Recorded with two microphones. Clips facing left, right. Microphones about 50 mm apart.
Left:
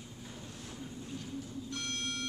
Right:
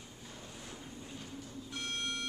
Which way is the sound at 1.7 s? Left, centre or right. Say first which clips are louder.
Right 1 dB; centre.